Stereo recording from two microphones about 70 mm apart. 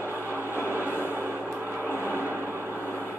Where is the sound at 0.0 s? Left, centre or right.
Right.